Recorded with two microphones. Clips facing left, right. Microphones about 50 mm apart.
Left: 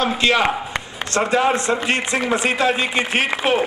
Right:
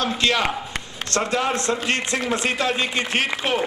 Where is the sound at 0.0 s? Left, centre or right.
Left.